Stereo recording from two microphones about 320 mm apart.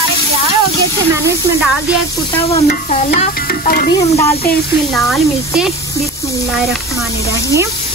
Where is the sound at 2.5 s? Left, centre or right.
Left.